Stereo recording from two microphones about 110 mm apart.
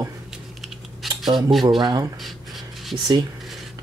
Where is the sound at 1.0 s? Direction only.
40° right (ahead or behind).